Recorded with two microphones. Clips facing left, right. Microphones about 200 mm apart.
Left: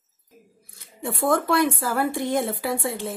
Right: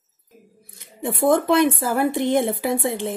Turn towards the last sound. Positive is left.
turn(degrees=-20)  # may be behind; listen again after turning